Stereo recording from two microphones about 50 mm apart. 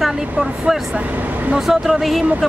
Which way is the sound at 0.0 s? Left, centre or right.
Centre.